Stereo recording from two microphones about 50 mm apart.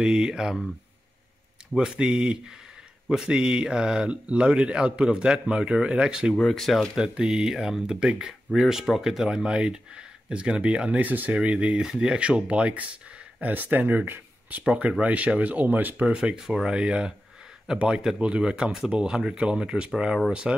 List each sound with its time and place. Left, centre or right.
0.0 s speech: centre
1.8 s speech: centre
6.3 s speech: centre
7.0 s speech: centre
13.4 s speech: right
16.1 s speech: centre